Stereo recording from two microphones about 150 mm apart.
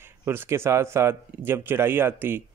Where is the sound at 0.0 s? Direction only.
15° right (ahead or behind).